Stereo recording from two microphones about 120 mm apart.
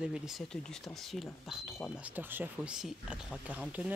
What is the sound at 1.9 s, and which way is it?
Speech, 15° right (ahead or behind).